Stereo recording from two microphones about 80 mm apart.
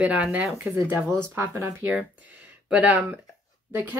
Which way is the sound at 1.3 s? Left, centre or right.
Right.